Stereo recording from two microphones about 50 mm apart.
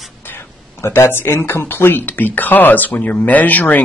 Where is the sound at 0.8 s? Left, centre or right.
Left.